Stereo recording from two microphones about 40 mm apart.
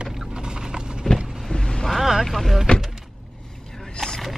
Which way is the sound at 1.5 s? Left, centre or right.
Centre.